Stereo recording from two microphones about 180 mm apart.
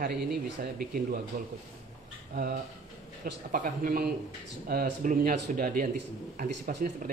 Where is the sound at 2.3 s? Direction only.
60° right (ahead or behind).